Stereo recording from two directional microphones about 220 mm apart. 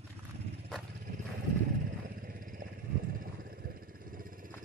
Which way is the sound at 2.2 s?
40° right (ahead or behind).